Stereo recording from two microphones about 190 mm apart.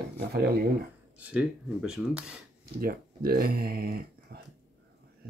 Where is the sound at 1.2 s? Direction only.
5° right (ahead or behind).